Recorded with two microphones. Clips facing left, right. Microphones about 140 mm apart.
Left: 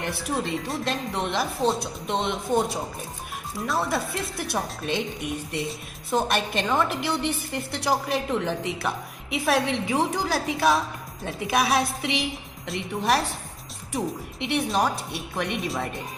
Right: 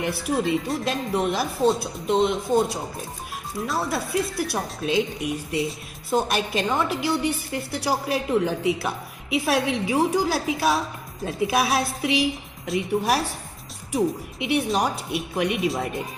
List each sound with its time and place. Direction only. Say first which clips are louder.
0.0 s speech: right 4 dB; 5° right (ahead or behind)
3.6 s speech: left 1 dB; centre (ahead or behind)